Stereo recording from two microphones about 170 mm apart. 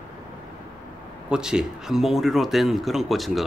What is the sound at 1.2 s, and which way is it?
Speech, 5° right (ahead or behind).